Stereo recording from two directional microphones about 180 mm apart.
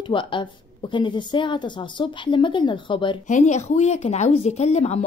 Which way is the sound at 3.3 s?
40° left (ahead or behind).